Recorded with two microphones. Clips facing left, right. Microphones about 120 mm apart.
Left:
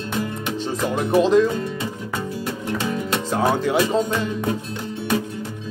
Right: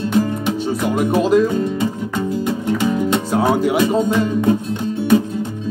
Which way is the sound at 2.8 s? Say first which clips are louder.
Right 6 dB; 15° right (ahead or behind).